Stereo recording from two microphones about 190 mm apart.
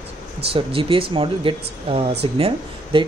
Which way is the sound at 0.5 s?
30° right (ahead or behind).